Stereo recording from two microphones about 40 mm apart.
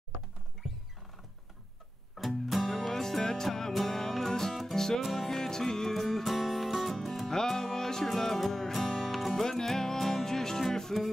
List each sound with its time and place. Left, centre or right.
2.1 s music: centre